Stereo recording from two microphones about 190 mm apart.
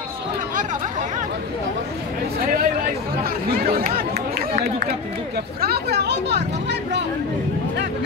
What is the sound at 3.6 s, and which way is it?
Run, 50° right (ahead or behind).